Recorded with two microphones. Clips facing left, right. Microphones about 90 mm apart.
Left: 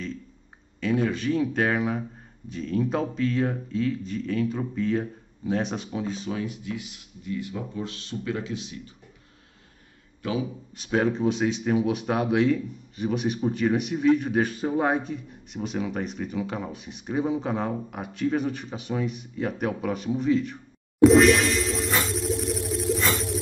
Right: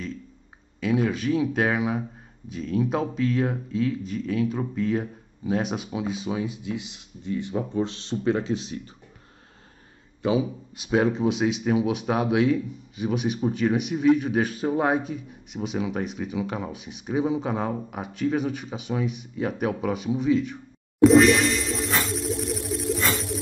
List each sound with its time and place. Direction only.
0.7 s speech: 5° right (ahead or behind); by 8.8 s 35° right (ahead or behind)
10.2 s speech: 20° right (ahead or behind)
10.9 s speech: 5° right (ahead or behind)
21.0 s a sound: centre (ahead or behind)